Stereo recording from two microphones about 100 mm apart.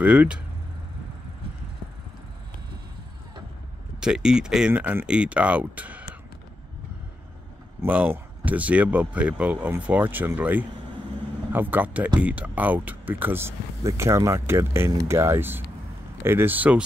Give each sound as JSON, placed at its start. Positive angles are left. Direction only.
{"t": 0.0, "sound": "speech", "side_deg": -10}
{"t": 4.0, "sound": "speech", "side_deg": -5}
{"t": 7.8, "sound": "speech", "side_deg": -15}